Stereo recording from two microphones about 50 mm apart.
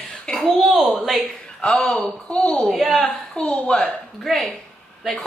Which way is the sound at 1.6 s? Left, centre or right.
Centre.